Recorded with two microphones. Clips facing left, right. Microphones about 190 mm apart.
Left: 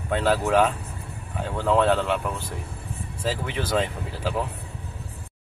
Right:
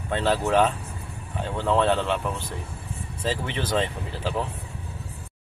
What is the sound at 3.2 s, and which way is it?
Speech, 10° left (ahead or behind).